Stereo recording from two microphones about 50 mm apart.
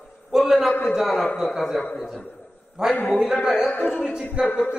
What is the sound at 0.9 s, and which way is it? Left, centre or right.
A man's voice, centre.